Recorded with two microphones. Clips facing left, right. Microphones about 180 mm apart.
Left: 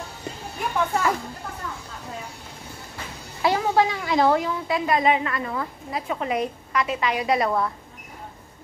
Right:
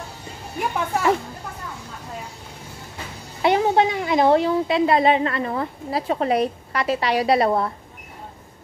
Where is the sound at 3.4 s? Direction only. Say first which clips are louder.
Right 3 dB; 20° right (ahead or behind).